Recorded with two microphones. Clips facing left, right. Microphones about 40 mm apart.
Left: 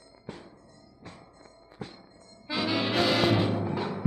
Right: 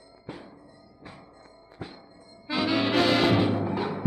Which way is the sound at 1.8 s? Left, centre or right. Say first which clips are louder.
Right 1 dB; centre.